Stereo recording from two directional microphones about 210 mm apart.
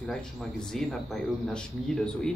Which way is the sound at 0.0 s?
5° left (ahead or behind).